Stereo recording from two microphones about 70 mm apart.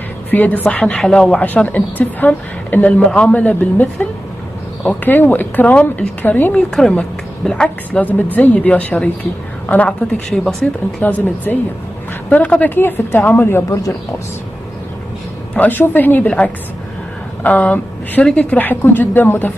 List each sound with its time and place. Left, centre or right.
0.3 s speech: left
0.7 s speech: centre
6.7 s speech: centre
9.8 s speech: centre; by 13.7 s left
15.5 s speech: left
17.4 s speech: left